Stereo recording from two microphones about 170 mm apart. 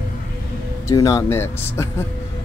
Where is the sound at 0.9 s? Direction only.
20° left (ahead or behind).